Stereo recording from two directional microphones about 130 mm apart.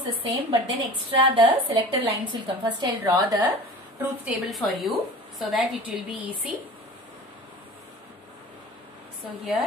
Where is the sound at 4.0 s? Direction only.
15° right (ahead or behind).